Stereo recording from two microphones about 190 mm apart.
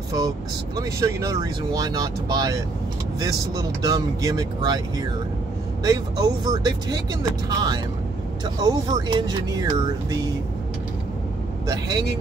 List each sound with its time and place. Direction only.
0.7 s speech: 15° right (ahead or behind)
11.6 s speech: 20° right (ahead or behind)